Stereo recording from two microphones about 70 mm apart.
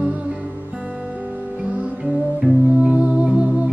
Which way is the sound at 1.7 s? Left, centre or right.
Centre.